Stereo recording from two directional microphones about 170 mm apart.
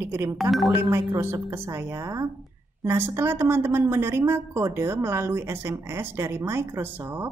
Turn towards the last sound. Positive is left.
turn(degrees=-10)  # may be behind; listen again after turning